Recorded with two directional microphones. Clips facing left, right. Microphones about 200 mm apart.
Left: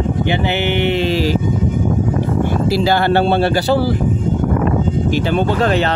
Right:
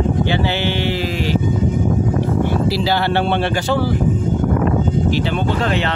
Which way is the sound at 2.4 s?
50° left (ahead or behind).